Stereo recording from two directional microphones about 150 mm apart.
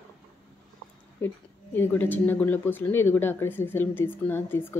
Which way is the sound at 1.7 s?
10° left (ahead or behind).